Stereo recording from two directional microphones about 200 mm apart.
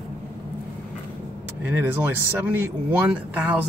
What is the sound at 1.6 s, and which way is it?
Speech, 10° right (ahead or behind).